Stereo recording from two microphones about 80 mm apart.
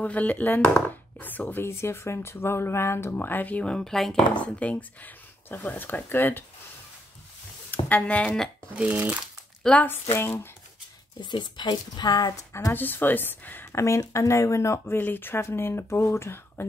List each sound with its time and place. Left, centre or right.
0.0 s speech: centre
4.3 s speech: centre
7.7 s speech: centre
8.7 s speech: centre
9.6 s a sound: centre
9.8 s speech: left
11.1 s speech: left
12.7 s speech: left
13.7 s speech: left
15.0 s speech: left